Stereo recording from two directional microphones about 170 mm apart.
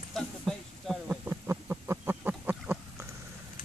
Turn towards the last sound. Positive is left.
turn(degrees=-10)  # may be behind; listen again after turning